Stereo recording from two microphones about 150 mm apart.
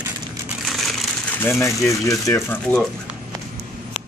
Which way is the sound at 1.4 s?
15° left (ahead or behind).